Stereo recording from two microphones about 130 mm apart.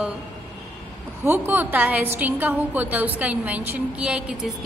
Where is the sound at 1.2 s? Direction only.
15° right (ahead or behind).